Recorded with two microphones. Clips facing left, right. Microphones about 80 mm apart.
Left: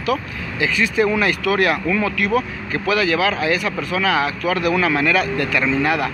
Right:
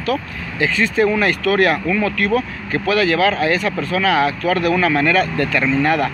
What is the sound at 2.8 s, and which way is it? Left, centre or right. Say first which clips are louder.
Speech: right 2 dB; centre.